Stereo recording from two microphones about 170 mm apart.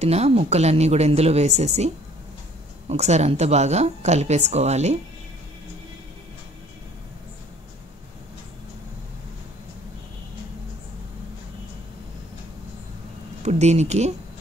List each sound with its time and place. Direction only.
0.0 s a woman's voice: 40° right (ahead or behind)
2.9 s a woman's voice: 40° right (ahead or behind)
13.4 s a woman's voice: 40° right (ahead or behind)